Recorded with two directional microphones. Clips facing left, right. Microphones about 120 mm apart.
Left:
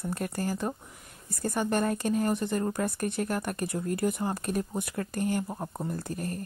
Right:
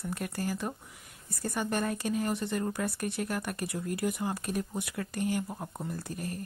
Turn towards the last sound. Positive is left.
turn(degrees=45)  # may be behind; listen again after turning